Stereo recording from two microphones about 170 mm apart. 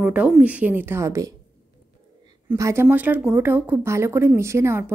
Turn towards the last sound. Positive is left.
turn(degrees=-15)  # may be behind; listen again after turning